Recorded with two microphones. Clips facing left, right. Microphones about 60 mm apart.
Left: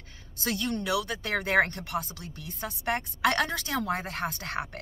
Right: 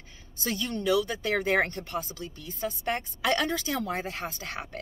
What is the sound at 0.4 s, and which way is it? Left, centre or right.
Speech, left.